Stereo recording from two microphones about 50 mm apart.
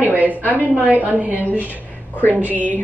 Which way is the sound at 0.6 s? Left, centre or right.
Right.